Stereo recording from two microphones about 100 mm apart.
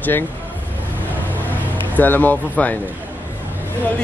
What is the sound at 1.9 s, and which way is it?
Speech, 15° left (ahead or behind).